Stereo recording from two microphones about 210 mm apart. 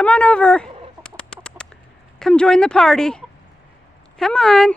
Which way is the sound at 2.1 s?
5° left (ahead or behind).